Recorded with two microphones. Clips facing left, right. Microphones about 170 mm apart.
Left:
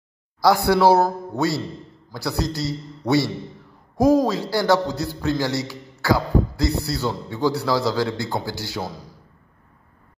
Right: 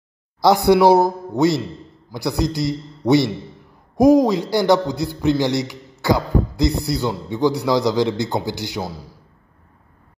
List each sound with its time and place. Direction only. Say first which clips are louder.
0.4 s a man's voice: right 3 dB; 20° right (ahead or behind)